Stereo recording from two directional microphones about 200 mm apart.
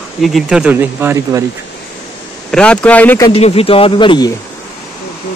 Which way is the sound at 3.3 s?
30° left (ahead or behind).